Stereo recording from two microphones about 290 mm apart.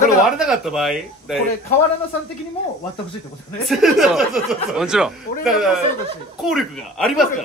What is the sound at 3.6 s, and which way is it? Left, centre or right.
Speech, centre.